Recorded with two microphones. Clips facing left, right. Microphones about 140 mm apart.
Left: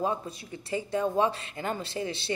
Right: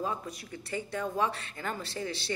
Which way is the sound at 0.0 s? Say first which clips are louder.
Left 4 dB; 25° left (ahead or behind).